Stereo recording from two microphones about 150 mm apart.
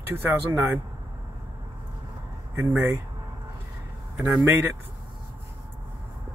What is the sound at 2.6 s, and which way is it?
Speech, 15° right (ahead or behind).